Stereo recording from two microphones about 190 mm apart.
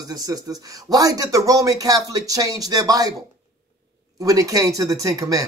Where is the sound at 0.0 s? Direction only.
20° right (ahead or behind).